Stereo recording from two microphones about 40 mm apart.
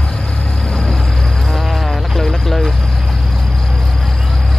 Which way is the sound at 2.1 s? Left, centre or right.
Centre.